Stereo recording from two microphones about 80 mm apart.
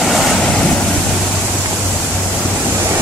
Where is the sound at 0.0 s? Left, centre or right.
Centre.